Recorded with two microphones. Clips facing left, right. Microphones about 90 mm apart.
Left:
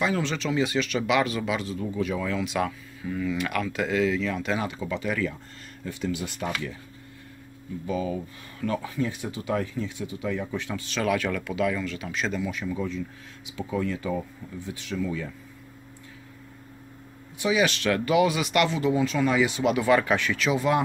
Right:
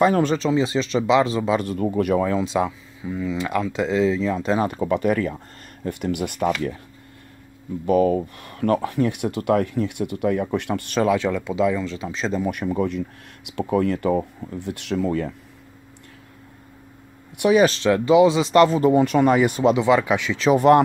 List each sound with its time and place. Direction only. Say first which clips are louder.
0.0 s speech: right 8 dB; 50° right (ahead or behind)
0.5 s speech: right 5 dB; 30° right (ahead or behind)
1.6 s speech: right 7 dB; 55° right (ahead or behind)
2.1 s speech: right 7 dB; 35° right (ahead or behind)
4.6 s speech: right 9 dB; 50° right (ahead or behind)
7.8 s speech: right 11 dB; 60° right (ahead or behind)
11.0 s speech: right 6 dB; 25° right (ahead or behind)
12.4 s speech: right 7 dB; 60° right (ahead or behind)
17.4 s speech: right 8 dB; 60° right (ahead or behind)
17.8 s speech: right 5 dB; 25° right (ahead or behind); by 19.6 s 50° right (ahead or behind)
19.6 s speech: right 4 dB; 20° right (ahead or behind)
20.5 s speech: right 11 dB; 60° right (ahead or behind)